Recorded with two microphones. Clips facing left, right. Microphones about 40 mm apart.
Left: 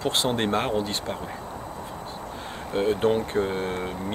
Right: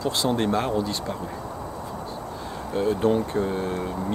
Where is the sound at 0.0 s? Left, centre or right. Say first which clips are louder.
Right 1 dB; left.